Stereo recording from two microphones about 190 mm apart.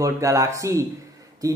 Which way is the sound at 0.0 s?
15° right (ahead or behind).